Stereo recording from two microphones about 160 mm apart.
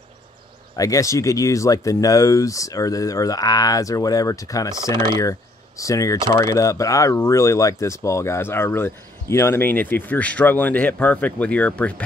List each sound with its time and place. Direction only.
0.7 s speech: 20° left (ahead or behind)